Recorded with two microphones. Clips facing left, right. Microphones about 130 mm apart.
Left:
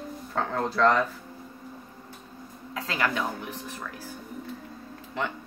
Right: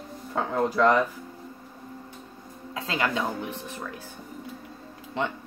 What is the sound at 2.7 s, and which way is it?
Speech, 25° right (ahead or behind).